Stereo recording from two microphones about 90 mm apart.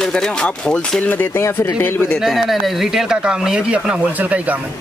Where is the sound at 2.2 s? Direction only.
5° right (ahead or behind).